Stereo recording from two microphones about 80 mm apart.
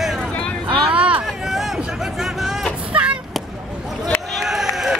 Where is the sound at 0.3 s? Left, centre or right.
Centre.